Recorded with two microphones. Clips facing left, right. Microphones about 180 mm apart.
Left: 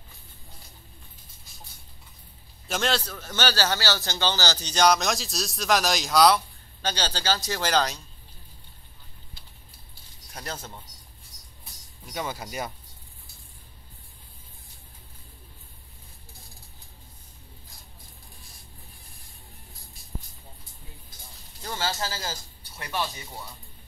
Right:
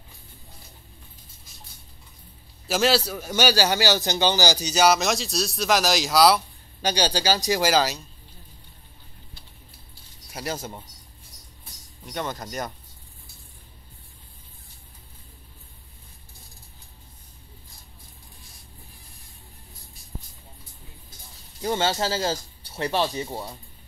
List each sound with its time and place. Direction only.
2.7 s a man's voice: 5° right (ahead or behind)
6.8 s a man's voice: 15° right (ahead or behind)
10.3 s a man's voice: 10° right (ahead or behind)
12.1 s speech: 5° left (ahead or behind)
21.6 s speech: 20° right (ahead or behind)